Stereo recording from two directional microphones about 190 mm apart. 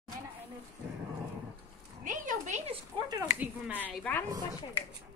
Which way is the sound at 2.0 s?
40° right (ahead or behind).